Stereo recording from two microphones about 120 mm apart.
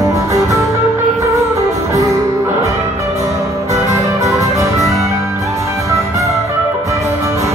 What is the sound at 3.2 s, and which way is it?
Music, 25° right (ahead or behind).